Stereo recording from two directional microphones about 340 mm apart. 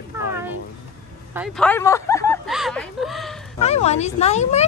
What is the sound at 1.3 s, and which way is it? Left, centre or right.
Speech, centre.